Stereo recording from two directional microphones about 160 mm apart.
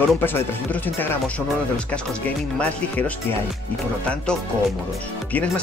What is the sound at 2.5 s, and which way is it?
Speech, 10° left (ahead or behind).